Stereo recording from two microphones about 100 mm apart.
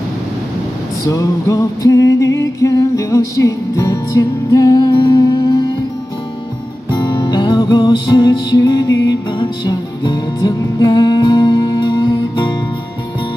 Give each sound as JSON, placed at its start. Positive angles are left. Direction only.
{"t": 1.0, "sound": "music", "side_deg": 35}
{"t": 6.9, "sound": "music", "side_deg": 45}